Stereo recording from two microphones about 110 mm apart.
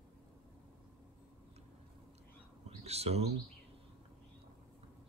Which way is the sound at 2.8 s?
70° right (ahead or behind).